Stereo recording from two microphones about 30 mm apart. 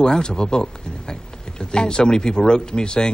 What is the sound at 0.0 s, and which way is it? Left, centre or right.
A woman's voice, left.